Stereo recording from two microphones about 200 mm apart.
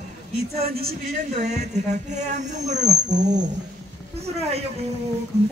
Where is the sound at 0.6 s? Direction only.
50° right (ahead or behind).